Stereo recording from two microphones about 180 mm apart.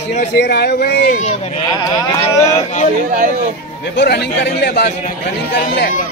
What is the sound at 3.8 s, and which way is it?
A man's voice, 65° left (ahead or behind).